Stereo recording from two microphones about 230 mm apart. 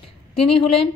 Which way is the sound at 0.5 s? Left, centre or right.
Left.